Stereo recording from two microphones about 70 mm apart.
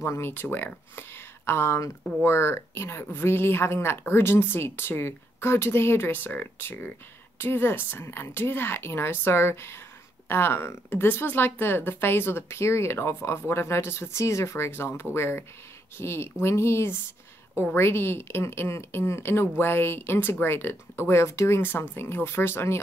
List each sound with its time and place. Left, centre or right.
0.0 s speech: left
21.5 s speech: left